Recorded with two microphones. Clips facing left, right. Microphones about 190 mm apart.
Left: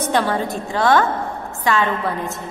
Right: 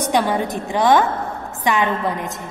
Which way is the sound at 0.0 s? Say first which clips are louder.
Right 1 dB; 15° right (ahead or behind).